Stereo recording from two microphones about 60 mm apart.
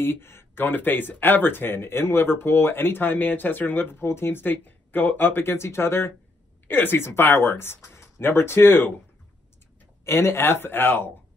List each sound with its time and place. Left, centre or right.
0.0 s speech: left
10.0 s speech: left